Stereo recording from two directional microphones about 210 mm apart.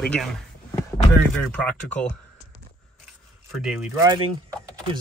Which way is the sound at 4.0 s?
20° right (ahead or behind).